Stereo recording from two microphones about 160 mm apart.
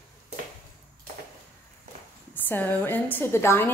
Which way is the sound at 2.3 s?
10° left (ahead or behind).